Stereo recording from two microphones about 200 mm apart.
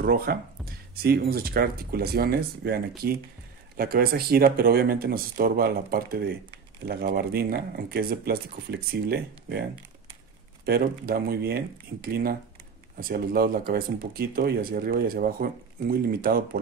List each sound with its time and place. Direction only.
0.0 s speech: 50° right (ahead or behind)